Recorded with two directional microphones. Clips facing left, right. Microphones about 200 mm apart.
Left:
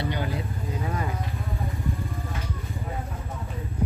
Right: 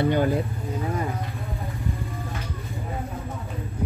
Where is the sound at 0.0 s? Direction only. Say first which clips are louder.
Right 8 dB; 50° right (ahead or behind).